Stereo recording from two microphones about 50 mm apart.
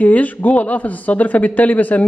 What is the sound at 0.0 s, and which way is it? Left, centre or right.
A man's voice, left.